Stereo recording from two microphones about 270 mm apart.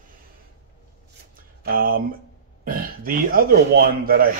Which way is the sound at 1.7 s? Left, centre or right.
Right.